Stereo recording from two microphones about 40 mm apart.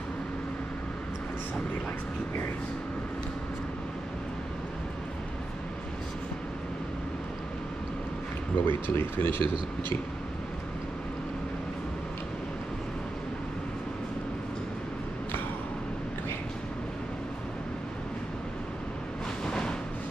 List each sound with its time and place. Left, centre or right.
8.6 s speech: left
19.4 s music: centre